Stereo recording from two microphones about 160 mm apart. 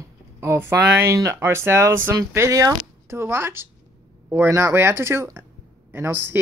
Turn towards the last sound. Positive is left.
turn(degrees=-15)  # may be behind; listen again after turning